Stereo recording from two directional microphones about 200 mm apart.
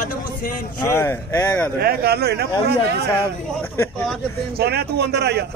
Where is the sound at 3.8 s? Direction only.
5° left (ahead or behind).